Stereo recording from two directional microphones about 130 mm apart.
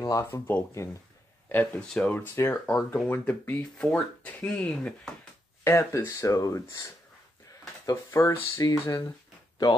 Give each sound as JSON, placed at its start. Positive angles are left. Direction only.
{"t": 0.0, "sound": "speech", "side_deg": 20}
{"t": 5.6, "sound": "speech", "side_deg": 20}